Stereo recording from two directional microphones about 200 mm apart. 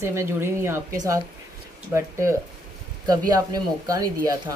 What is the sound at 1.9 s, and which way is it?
A woman's voice, 15° right (ahead or behind).